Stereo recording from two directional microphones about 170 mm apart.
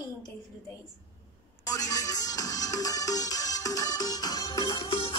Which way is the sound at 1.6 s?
20° left (ahead or behind).